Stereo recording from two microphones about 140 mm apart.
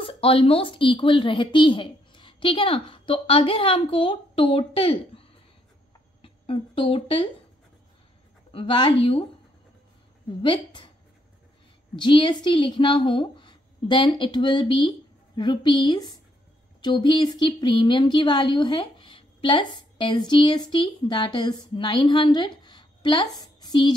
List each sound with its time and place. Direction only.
0.0 s speech: 40° left (ahead or behind)
8.5 s speech: 40° left (ahead or behind)
10.4 s speech: 35° left (ahead or behind)
11.9 s a woman's voice: 35° left (ahead or behind)
22.6 s a sound: 35° left (ahead or behind)